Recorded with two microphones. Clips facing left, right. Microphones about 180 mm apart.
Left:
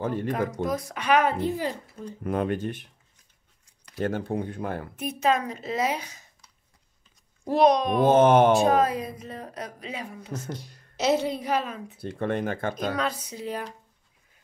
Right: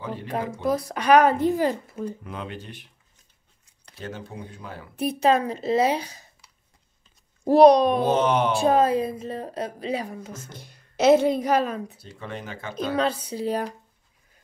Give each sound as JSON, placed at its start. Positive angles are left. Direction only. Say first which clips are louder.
{"t": 0.0, "sound": "speech", "louder": "left 5 dB", "side_deg": 50}
{"t": 0.7, "sound": "a woman's voice", "louder": "right 8 dB", "side_deg": -35}
{"t": 2.2, "sound": "speech", "louder": "left 9 dB", "side_deg": 50}
{"t": 4.0, "sound": "speech", "louder": "left 9 dB", "side_deg": 55}
{"t": 4.9, "sound": "a woman's voice", "louder": "right 5 dB", "side_deg": -35}
{"t": 7.4, "sound": "a woman's voice", "louder": "right 6 dB", "side_deg": -35}
{"t": 8.0, "sound": "speech", "louder": "left 4 dB", "side_deg": 50}
{"t": 8.5, "sound": "speech", "louder": "right 2 dB", "side_deg": -30}
{"t": 10.5, "sound": "a woman's voice", "louder": "left 8 dB", "side_deg": -55}
{"t": 12.0, "sound": "speech", "louder": "left 9 dB", "side_deg": 55}
{"t": 12.9, "sound": "a woman's voice", "louder": "right 5 dB", "side_deg": -30}